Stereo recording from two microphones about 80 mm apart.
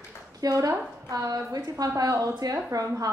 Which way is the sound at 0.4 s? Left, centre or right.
Right.